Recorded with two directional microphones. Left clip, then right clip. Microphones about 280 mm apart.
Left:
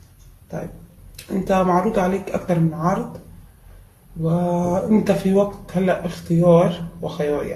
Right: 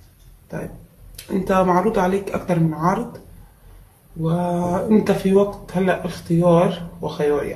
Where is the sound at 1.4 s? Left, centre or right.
Centre.